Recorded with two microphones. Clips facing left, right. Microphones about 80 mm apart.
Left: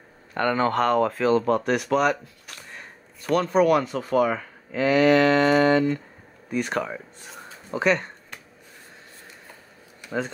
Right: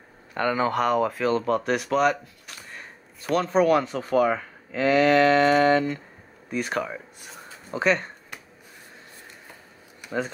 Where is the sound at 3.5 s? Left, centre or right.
Right.